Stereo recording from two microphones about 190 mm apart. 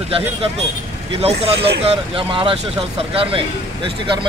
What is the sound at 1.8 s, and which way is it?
Speech, 25° right (ahead or behind).